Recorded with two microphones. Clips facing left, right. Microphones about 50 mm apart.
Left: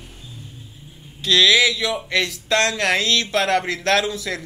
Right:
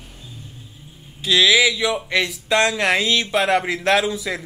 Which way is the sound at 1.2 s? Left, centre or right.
Centre.